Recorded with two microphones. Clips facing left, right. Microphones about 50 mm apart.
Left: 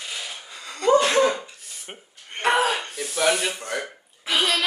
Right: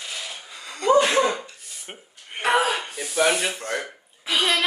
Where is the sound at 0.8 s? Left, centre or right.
Centre.